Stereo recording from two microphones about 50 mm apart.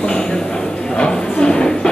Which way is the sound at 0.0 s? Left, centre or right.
Centre.